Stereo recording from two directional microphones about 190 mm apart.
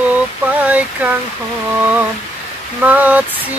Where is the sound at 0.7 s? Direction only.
10° right (ahead or behind).